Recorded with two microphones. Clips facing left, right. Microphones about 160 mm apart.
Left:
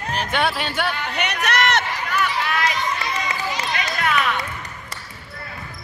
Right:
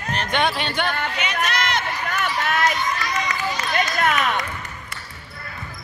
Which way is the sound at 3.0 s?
30° left (ahead or behind).